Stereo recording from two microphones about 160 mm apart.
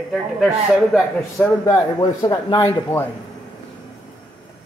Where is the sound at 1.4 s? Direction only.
20° left (ahead or behind).